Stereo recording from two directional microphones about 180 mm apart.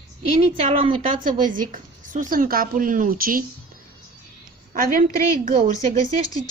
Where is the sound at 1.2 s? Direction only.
50° right (ahead or behind).